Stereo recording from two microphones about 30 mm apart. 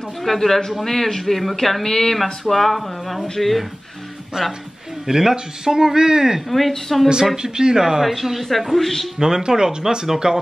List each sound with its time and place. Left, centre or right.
0.2 s speech: centre
4.4 s speech: right
5.0 s speech: centre
6.9 s speech: centre
7.4 s speech: right
8.0 s speech: centre
9.2 s speech: right